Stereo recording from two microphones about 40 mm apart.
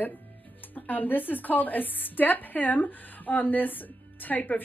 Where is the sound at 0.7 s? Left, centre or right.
Left.